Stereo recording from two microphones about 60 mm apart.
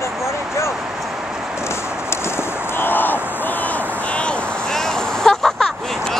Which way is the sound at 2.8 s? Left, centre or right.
Left.